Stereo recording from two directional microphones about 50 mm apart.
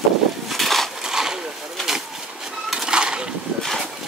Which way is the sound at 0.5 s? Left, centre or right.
Centre.